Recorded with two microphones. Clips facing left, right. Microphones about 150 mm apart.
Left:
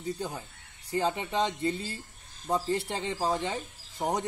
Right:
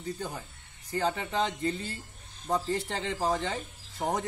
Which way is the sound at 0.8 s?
15° left (ahead or behind).